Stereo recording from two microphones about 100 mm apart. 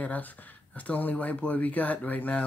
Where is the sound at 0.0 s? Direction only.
15° left (ahead or behind).